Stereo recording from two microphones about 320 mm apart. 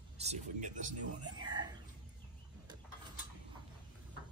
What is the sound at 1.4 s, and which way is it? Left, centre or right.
Whispering, centre.